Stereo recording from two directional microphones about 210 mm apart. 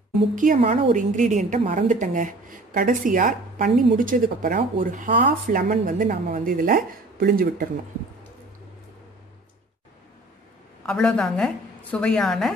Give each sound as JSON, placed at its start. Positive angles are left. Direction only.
{"t": 0.4, "sound": "a woman's voice", "side_deg": -35}
{"t": 10.9, "sound": "a woman's voice", "side_deg": 5}